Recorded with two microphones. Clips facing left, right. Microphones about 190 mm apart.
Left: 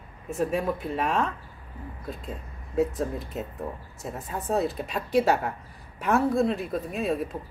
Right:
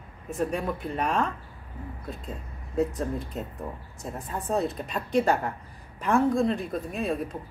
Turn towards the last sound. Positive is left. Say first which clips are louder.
# left 1 dB
turn(degrees=0)  # may be behind; listen again after turning